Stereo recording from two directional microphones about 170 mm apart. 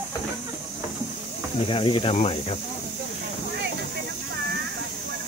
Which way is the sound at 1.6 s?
30° left (ahead or behind).